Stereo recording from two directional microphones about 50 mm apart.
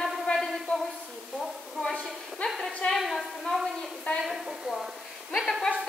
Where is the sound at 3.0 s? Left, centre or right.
Centre.